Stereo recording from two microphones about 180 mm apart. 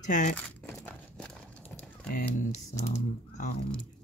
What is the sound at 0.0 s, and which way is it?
Speech, 40° left (ahead or behind).